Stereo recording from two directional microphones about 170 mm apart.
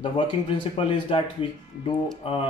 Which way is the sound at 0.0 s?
30° left (ahead or behind).